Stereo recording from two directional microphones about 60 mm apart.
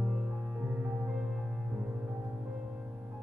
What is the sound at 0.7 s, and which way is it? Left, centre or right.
Music, right.